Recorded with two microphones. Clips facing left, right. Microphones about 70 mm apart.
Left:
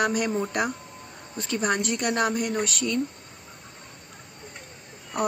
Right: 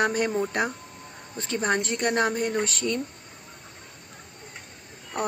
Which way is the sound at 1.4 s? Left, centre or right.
Right.